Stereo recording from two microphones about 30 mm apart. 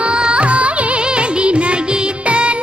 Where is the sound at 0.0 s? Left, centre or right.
Right.